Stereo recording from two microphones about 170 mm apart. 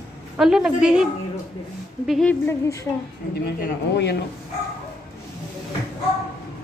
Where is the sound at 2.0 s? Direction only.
Centre (ahead or behind).